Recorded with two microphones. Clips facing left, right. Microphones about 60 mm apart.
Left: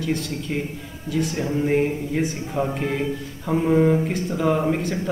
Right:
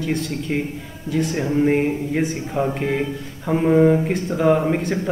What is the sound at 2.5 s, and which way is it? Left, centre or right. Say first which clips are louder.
Speech: right 3 dB; centre.